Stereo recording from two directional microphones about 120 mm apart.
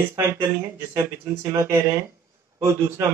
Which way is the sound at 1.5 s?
25° right (ahead or behind).